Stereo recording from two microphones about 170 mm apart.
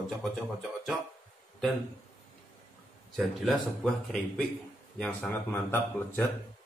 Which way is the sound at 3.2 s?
Centre (ahead or behind).